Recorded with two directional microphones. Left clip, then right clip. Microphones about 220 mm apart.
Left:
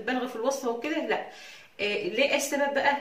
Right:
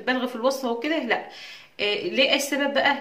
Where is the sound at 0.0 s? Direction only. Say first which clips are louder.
Right 5 dB; 45° right (ahead or behind).